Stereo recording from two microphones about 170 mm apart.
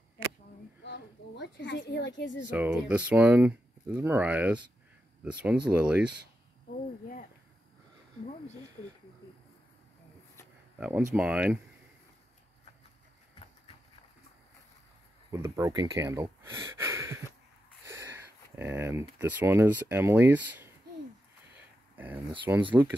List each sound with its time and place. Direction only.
0.8 s a woman's voice: 90° left
2.5 s speech: 10° right (ahead or behind)
10.8 s speech: 10° right (ahead or behind)
15.3 s speech: 15° right (ahead or behind)
21.9 s speech: 10° right (ahead or behind)